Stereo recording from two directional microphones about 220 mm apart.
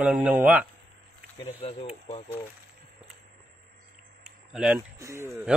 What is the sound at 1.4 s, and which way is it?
Speech, 30° left (ahead or behind).